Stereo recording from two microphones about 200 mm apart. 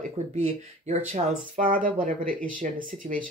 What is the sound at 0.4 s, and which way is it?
Speech, 30° right (ahead or behind).